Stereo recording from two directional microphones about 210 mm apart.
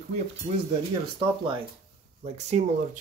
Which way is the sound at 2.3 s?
35° right (ahead or behind).